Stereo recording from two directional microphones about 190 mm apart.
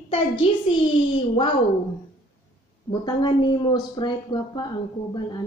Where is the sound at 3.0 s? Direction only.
25° left (ahead or behind).